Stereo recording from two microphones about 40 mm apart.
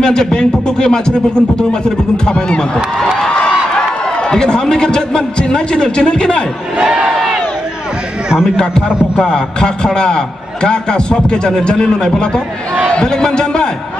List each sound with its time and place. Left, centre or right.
0.0 s a man's voice: centre
2.2 s a man's voice: left
3.2 s a sound: left
4.3 s a man's voice: centre
8.5 s a man's voice: centre